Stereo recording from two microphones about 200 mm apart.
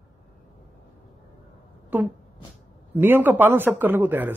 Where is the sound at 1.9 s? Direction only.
10° right (ahead or behind).